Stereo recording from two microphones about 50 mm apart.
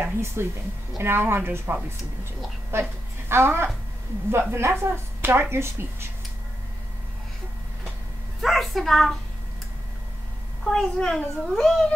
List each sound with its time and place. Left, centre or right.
0.0 s a woman's voice: right
2.7 s a woman's voice: right
8.4 s a woman's voice: centre
10.6 s a child's voice: centre